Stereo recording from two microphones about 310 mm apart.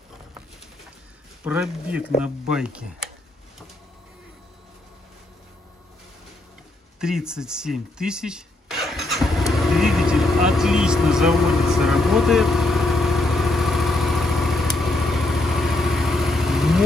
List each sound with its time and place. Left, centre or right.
1.4 s speech: centre
7.0 s a sound: centre
10.5 s vehicle: centre